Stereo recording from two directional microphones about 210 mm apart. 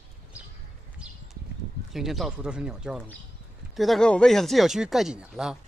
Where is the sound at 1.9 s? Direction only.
Centre (ahead or behind).